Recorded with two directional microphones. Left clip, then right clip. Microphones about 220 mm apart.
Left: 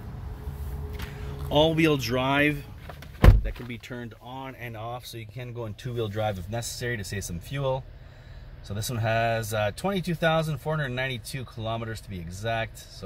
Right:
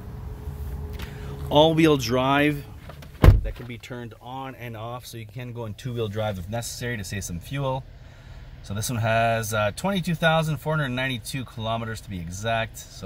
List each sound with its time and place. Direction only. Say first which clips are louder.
1.2 s speech: right 4 dB; 25° right (ahead or behind)
3.4 s speech: right 1 dB; centre (ahead or behind)
4.3 s speech: right 3 dB; 15° right (ahead or behind)